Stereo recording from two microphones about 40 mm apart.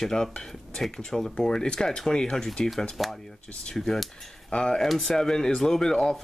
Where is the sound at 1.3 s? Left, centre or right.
Centre.